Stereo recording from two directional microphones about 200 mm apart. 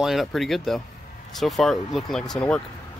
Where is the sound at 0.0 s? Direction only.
Centre (ahead or behind).